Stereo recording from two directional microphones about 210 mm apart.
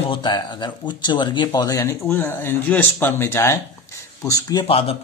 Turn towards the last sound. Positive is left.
turn(degrees=25)  # may be behind; listen again after turning